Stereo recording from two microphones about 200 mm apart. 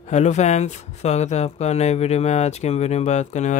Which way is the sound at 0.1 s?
35° left (ahead or behind).